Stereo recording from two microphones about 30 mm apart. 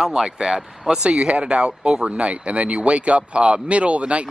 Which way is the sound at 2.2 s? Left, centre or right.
Right.